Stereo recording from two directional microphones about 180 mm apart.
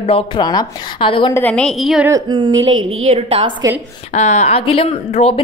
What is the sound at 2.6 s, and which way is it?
Speech, 35° right (ahead or behind).